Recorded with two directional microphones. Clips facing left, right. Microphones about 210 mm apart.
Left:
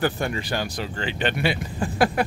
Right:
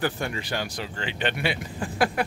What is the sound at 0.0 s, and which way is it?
Speech, 40° left (ahead or behind).